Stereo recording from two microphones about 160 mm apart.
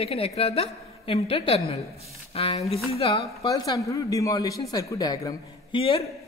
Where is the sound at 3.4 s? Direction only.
20° left (ahead or behind).